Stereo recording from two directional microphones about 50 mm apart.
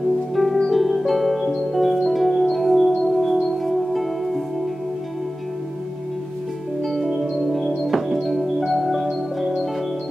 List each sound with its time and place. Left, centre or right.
0.6 s music: centre
6.8 s organ: centre